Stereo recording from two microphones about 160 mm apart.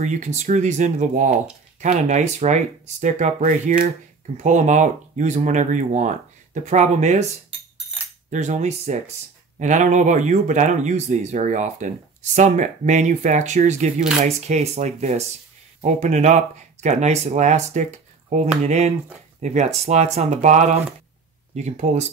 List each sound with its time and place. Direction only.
0.0 s speech: 45° right (ahead or behind)
8.3 s speech: 50° right (ahead or behind)